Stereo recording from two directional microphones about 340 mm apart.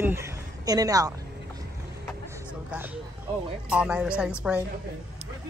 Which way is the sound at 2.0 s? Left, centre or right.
Centre.